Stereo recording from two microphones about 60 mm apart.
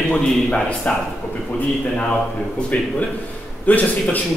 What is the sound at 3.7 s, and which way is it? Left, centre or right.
Speech, left.